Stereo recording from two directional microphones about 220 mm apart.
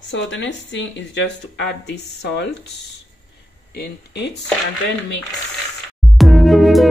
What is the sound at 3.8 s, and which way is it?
Speech, 50° left (ahead or behind).